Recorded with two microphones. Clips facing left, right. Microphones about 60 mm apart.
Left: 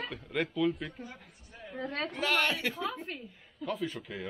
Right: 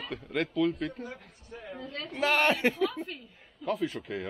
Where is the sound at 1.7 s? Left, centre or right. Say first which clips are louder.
Left 6 dB; left.